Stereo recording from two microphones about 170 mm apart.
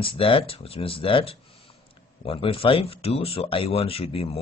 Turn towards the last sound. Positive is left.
turn(degrees=35)  # may be behind; listen again after turning